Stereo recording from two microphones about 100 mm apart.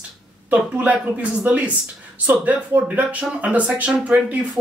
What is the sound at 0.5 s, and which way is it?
Speech, 15° right (ahead or behind).